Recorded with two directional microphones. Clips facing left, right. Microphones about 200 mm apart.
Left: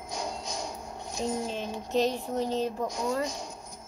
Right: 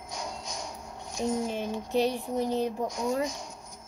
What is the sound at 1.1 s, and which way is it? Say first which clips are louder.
A woman's voice: right 2 dB; 10° right (ahead or behind).